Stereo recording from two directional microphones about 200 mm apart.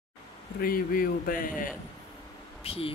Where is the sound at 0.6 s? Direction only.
45° left (ahead or behind).